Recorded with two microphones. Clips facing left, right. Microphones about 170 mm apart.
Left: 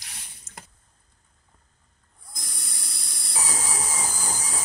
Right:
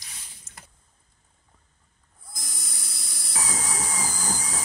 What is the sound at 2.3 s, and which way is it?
Dental drill, centre (ahead or behind).